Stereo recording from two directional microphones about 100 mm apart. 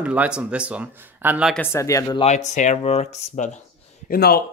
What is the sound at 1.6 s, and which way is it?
Speech, 30° left (ahead or behind).